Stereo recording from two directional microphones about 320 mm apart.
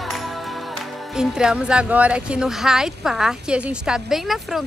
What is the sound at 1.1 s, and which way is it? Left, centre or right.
Speech, centre.